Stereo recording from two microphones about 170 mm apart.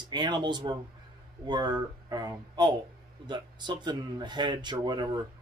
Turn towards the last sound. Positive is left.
turn(degrees=-25)  # may be behind; listen again after turning